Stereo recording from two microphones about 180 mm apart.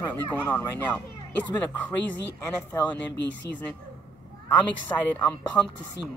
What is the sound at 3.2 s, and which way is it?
Speech, 90° left.